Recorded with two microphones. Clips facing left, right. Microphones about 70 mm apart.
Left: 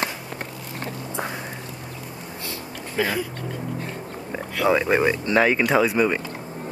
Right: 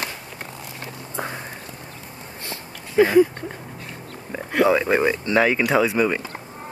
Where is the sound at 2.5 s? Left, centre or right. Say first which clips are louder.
Even; right.